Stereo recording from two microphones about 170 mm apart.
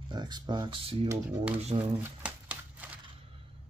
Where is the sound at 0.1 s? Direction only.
25° right (ahead or behind).